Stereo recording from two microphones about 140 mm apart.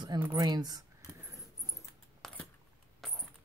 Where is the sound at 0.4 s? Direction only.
30° right (ahead or behind).